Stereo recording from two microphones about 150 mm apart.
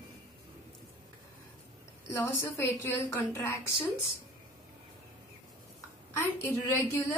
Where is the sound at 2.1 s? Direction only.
15° left (ahead or behind).